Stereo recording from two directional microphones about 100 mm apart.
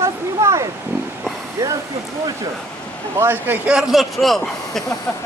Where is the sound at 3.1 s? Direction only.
20° right (ahead or behind).